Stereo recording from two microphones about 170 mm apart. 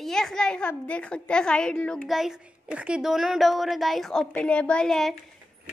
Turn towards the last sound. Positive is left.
turn(degrees=0)  # may be behind; listen again after turning